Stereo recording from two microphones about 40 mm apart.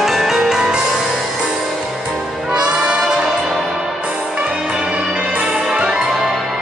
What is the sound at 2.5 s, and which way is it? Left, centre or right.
Brass instrument, right.